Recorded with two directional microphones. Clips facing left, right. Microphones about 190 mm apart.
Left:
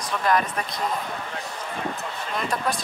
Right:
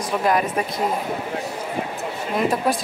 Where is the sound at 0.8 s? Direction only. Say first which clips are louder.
Right 5 dB; 25° right (ahead or behind).